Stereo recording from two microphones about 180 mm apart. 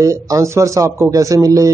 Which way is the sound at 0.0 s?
15° right (ahead or behind).